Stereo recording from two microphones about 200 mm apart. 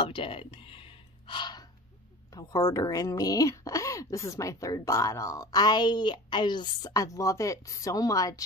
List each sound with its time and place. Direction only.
0.0 s gasp: 25° left (ahead or behind)
2.3 s speech: 15° left (ahead or behind)